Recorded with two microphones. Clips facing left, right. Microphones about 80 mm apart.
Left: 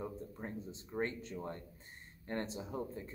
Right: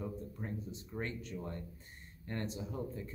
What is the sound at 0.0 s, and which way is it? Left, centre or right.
Speech, left.